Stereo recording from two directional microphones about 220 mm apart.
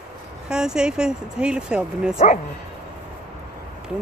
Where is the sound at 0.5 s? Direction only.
5° right (ahead or behind).